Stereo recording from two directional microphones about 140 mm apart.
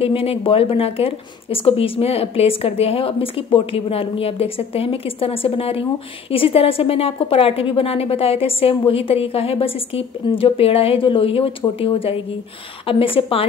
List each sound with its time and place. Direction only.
0.0 s a woman's voice: 45° left (ahead or behind)